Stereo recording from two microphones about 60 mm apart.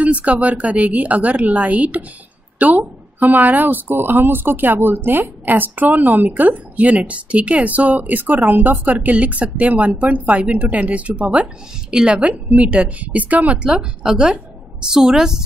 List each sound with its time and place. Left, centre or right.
0.0 s a woman's voice: right